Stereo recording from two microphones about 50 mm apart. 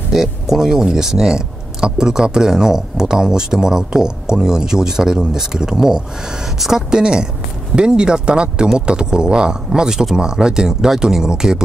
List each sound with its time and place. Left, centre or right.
0.1 s speech: centre